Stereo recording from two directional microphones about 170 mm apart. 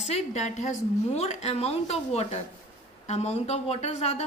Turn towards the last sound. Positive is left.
turn(degrees=40)  # may be behind; listen again after turning